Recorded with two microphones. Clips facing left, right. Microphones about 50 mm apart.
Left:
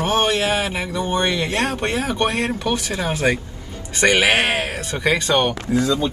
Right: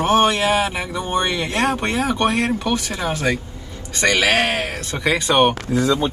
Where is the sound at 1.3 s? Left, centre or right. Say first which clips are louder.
Right 1 dB; centre.